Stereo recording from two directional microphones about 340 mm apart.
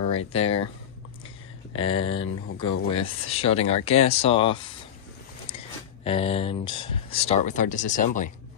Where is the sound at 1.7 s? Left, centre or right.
Centre.